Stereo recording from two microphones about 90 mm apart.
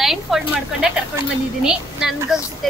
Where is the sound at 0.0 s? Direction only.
5° right (ahead or behind).